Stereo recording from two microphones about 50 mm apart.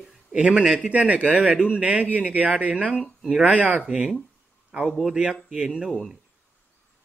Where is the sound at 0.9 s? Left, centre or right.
Right.